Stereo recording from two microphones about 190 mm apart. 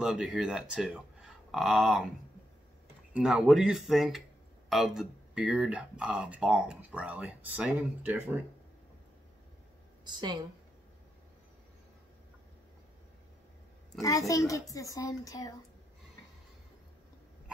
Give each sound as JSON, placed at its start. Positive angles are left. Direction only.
{"t": 0.0, "sound": "speech", "side_deg": -5}
{"t": 3.1, "sound": "speech", "side_deg": -5}
{"t": 10.0, "sound": "a woman's voice", "side_deg": -20}
{"t": 14.0, "sound": "speech", "side_deg": 15}